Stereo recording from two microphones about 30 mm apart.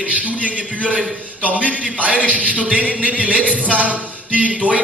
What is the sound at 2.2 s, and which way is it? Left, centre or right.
Speech, right.